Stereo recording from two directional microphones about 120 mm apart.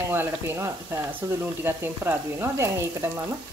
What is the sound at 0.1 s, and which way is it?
Frying, 20° right (ahead or behind).